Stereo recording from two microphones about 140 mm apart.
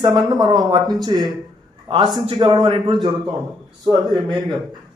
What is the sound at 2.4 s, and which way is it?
A man's voice, 30° right (ahead or behind).